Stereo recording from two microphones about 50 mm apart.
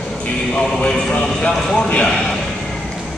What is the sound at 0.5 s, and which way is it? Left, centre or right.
A man's voice, centre.